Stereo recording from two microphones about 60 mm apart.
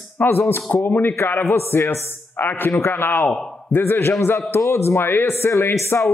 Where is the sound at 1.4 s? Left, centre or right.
Left.